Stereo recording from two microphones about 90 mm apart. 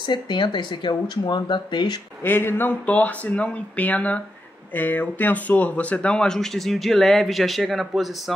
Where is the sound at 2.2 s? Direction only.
25° left (ahead or behind); by 8.3 s centre (ahead or behind).